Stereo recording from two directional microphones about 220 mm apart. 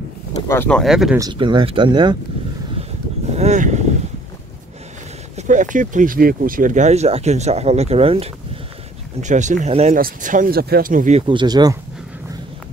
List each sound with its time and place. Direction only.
0.5 s speech: 5° left (ahead or behind)
1.1 s speech: 20° right (ahead or behind)
3.3 s speech: 30° right (ahead or behind)
5.5 s speech: 35° right (ahead or behind); by 11.8 s 20° right (ahead or behind)